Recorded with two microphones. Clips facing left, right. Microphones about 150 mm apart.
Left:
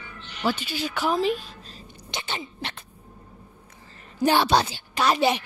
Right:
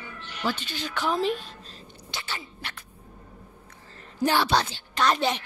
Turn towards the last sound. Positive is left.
turn(degrees=10)  # may be behind; listen again after turning